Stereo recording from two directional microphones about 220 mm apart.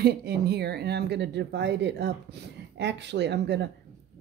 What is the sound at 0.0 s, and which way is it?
Speech, 45° right (ahead or behind).